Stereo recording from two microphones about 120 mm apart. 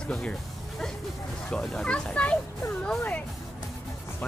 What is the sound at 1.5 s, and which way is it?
A child's voice, 5° left (ahead or behind).